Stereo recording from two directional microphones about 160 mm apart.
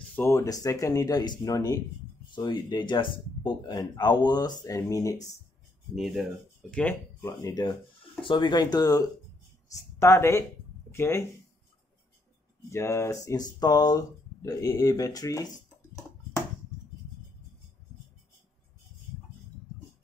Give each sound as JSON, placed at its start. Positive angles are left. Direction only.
{"t": 0.1, "sound": "speech", "side_deg": 15}
{"t": 5.9, "sound": "speech", "side_deg": 0}
{"t": 6.7, "sound": "speech", "side_deg": 10}
{"t": 8.0, "sound": "speech", "side_deg": 30}
{"t": 12.6, "sound": "speech", "side_deg": 15}